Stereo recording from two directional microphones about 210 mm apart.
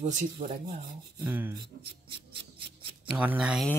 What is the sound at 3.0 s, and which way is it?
Speech, 5° right (ahead or behind).